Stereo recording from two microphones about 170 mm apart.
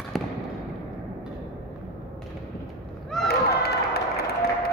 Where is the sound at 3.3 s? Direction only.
70° left (ahead or behind).